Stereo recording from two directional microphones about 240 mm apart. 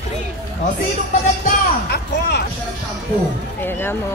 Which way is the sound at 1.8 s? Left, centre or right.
Left.